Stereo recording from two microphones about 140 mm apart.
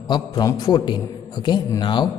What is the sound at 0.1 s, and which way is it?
A man's voice, 25° left (ahead or behind).